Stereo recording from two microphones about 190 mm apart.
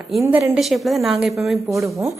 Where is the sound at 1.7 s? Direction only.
15° right (ahead or behind).